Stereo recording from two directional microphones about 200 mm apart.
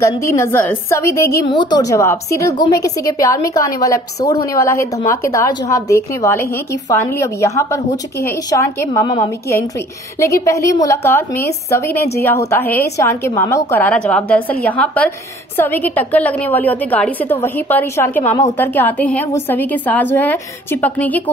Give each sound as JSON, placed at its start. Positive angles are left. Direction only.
{"t": 0.2, "sound": "a woman's voice", "side_deg": 10}